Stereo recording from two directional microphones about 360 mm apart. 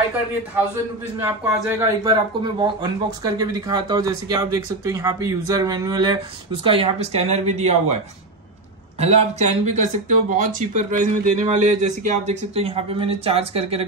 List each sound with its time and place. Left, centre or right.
1.2 s speech: centre
9.0 s speech: centre